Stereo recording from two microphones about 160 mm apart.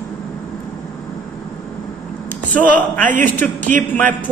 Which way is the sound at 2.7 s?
10° left (ahead or behind).